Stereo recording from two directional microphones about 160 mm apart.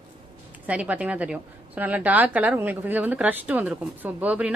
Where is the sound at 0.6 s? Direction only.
10° right (ahead or behind).